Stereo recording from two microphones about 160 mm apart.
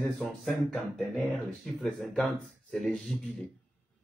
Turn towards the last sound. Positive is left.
turn(degrees=0)  # may be behind; listen again after turning